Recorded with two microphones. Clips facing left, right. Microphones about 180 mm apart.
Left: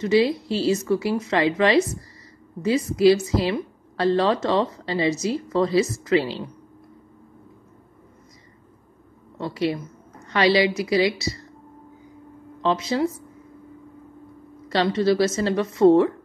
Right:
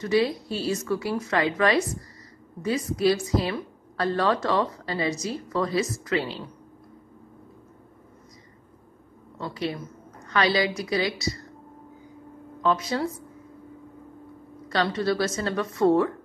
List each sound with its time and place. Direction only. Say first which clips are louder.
0.0 s a woman's voice: left 4 dB; 25° left (ahead or behind)
10.3 s a woman's voice: left 5 dB; 30° left (ahead or behind)
12.6 s a woman's voice: left 3 dB; 25° left (ahead or behind)
14.7 s a woman's voice: left 5 dB; 25° left (ahead or behind)